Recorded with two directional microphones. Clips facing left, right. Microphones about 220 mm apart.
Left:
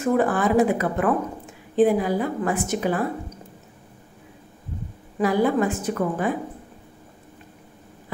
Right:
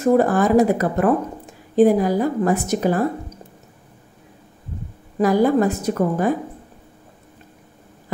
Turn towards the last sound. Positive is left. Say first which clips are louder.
# right 4 dB
turn(degrees=-40)  # may be behind; listen again after turning